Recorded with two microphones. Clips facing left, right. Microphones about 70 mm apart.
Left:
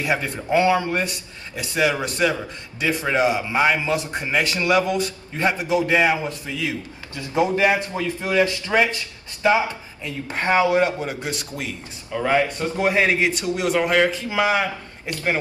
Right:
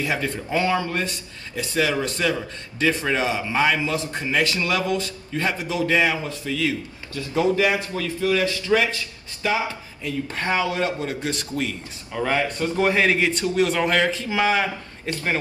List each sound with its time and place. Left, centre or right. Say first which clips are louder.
0.0 s a man's voice: left 1 dB; centre